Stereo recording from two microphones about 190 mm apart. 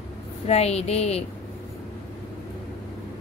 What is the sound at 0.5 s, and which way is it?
Speech, 35° left (ahead or behind).